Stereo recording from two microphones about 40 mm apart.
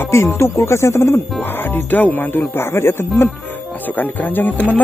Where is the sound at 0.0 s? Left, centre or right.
Left.